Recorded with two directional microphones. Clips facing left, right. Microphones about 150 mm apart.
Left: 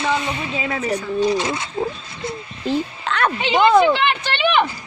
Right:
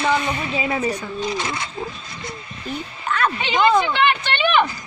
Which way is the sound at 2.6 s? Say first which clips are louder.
Left 6 dB; 90° left.